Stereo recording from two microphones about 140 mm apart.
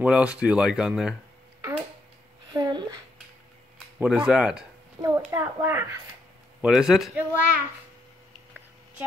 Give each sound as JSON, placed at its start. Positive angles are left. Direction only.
{"t": 0.0, "sound": "speech", "side_deg": -10}
{"t": 2.5, "sound": "a sound", "side_deg": -30}
{"t": 4.0, "sound": "a child's voice", "side_deg": -5}
{"t": 5.0, "sound": "a child's voice", "side_deg": -30}
{"t": 5.3, "sound": "speech", "side_deg": -20}
{"t": 6.6, "sound": "a child's voice", "side_deg": -5}